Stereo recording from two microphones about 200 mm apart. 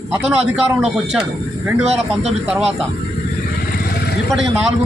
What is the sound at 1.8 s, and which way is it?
Speech, 35° right (ahead or behind).